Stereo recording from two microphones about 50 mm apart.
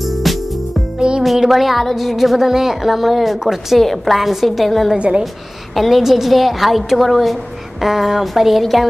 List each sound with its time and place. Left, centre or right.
0.0 s music: centre
0.9 s music: centre
1.2 s a woman's voice: centre
4.9 s a woman's voice: right
5.8 s a woman's voice: centre